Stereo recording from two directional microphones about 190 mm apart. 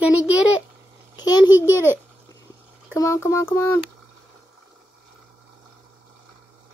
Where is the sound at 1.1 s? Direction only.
20° left (ahead or behind).